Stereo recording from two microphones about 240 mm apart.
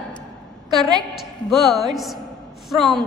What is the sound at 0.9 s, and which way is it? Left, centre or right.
A woman's voice, centre.